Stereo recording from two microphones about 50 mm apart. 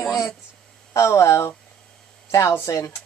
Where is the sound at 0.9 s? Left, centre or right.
Left.